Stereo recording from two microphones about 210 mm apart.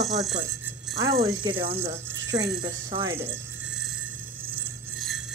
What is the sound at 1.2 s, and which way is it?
Speech, 20° right (ahead or behind).